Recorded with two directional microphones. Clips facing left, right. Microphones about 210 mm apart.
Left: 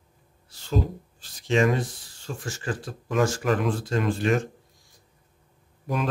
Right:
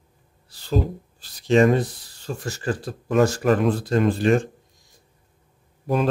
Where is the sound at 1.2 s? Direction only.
35° right (ahead or behind).